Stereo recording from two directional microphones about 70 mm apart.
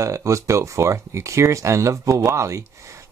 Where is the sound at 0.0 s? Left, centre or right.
Right.